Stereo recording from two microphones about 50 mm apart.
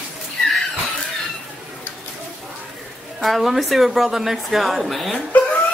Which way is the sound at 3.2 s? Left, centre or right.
Centre.